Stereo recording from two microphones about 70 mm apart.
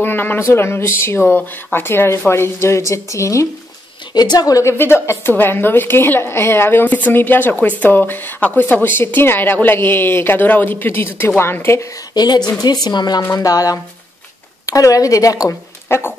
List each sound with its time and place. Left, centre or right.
0.0 s a sound: left
0.4 s speech: left
4.1 s a woman's voice: left
4.6 s speech: left
12.1 s a woman's voice: left
12.8 s speech: left
13.4 s speech: left
15.9 s speech: left